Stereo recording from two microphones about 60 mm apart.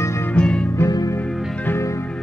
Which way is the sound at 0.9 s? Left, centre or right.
Left.